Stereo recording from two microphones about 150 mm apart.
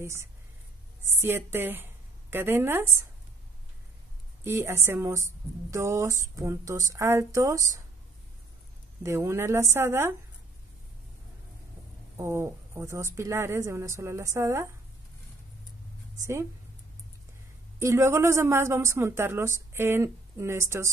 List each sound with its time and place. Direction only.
0.0 s a woman's voice: 20° right (ahead or behind)
4.5 s a woman's voice: 15° right (ahead or behind)
9.0 s a woman's voice: 20° right (ahead or behind)
12.2 s a woman's voice: 15° right (ahead or behind)
16.2 s a woman's voice: 20° right (ahead or behind)
17.7 s a woman's voice: 20° right (ahead or behind)